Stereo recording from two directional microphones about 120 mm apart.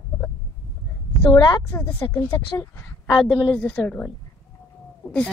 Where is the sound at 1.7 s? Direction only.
20° left (ahead or behind).